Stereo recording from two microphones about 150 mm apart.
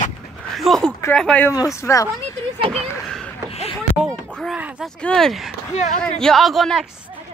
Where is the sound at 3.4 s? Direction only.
40° left (ahead or behind).